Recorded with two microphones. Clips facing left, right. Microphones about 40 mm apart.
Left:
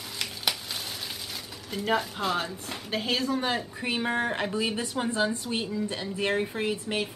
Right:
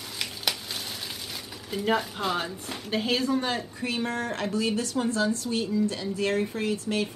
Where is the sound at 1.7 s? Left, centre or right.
Centre; by 7.0 s left.